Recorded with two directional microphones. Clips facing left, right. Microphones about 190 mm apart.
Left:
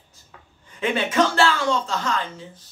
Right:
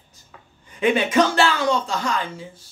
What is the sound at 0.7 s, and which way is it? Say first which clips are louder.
Speech: right 4 dB; 15° right (ahead or behind).